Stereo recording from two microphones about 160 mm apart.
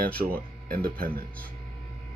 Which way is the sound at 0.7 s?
65° right (ahead or behind).